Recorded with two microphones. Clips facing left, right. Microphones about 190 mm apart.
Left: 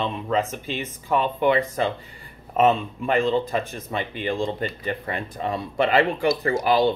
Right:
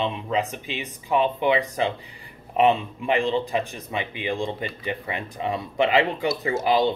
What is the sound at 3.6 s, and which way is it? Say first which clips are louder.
Speech: left 1 dB; 15° right (ahead or behind).